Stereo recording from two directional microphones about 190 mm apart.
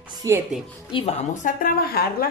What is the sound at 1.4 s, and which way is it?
Speech, 50° left (ahead or behind).